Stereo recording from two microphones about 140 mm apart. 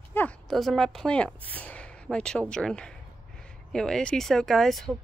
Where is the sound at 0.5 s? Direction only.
Centre (ahead or behind).